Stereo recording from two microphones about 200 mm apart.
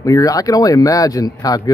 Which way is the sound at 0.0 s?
15° left (ahead or behind).